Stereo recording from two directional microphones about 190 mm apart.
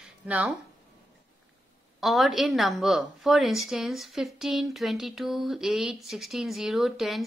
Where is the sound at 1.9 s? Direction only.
Centre (ahead or behind).